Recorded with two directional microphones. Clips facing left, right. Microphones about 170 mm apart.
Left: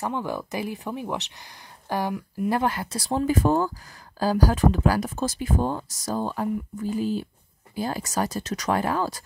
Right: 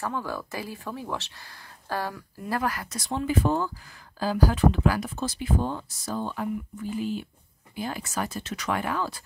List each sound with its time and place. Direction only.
0.0 s speech: 20° left (ahead or behind); by 9.2 s 40° left (ahead or behind)